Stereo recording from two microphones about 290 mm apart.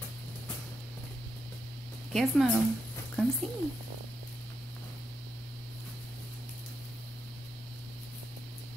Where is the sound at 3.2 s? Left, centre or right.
Centre.